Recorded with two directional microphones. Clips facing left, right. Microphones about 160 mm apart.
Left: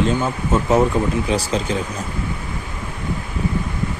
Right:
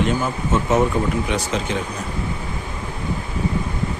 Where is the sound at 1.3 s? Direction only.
35° left (ahead or behind).